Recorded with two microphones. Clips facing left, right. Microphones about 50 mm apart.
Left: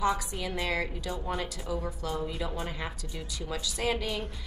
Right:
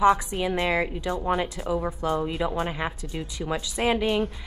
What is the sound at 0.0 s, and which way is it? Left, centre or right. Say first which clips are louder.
A woman's voice: right 9 dB; right.